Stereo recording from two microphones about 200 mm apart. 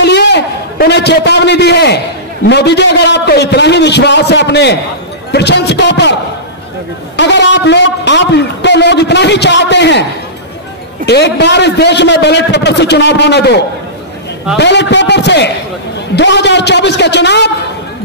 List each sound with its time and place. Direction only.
0.0 s a sound: 60° left (ahead or behind)
2.4 s a man's voice: 55° left (ahead or behind)
7.2 s a man's voice: 60° left (ahead or behind)
11.1 s a man's voice: 60° left (ahead or behind)
14.6 s a man's voice: 60° left (ahead or behind)